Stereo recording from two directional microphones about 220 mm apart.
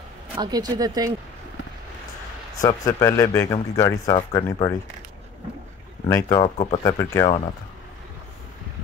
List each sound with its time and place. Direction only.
0.4 s speech: 20° right (ahead or behind)
2.6 s speech: 15° left (ahead or behind)
6.0 s speech: 15° left (ahead or behind)
6.4 s speech: 25° left (ahead or behind)